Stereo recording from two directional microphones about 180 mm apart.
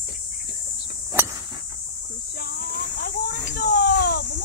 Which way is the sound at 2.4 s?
60° left (ahead or behind).